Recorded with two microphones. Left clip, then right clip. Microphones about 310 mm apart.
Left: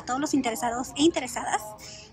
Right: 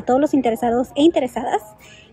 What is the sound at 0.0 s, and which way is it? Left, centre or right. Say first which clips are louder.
A woman's voice: right 10 dB; centre.